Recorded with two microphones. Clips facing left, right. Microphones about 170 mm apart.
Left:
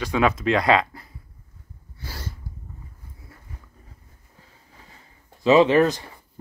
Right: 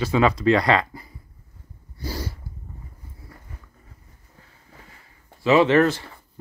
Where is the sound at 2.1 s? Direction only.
15° right (ahead or behind).